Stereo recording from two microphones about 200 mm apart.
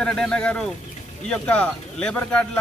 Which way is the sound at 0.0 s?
5° left (ahead or behind).